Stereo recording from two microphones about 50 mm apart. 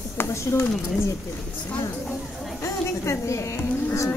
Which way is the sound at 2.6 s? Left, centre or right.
Left.